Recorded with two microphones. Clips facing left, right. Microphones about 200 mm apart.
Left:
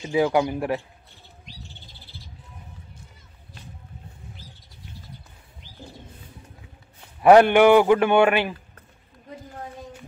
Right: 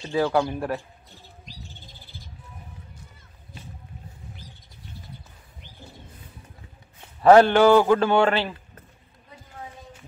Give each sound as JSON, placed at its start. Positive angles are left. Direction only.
{"t": 0.0, "sound": "speech", "side_deg": 15}
{"t": 7.2, "sound": "a man's voice", "side_deg": 15}